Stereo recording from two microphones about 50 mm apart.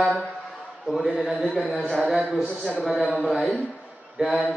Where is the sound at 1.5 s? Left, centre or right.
Centre.